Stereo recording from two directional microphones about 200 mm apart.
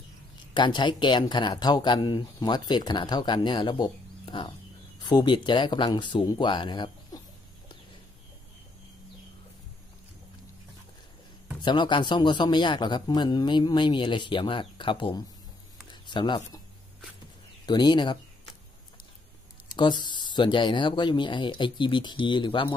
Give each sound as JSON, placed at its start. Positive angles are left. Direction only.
{"t": 0.6, "sound": "speech", "side_deg": 25}
{"t": 11.6, "sound": "speech", "side_deg": 25}
{"t": 17.6, "sound": "speech", "side_deg": 20}
{"t": 19.7, "sound": "speech", "side_deg": 20}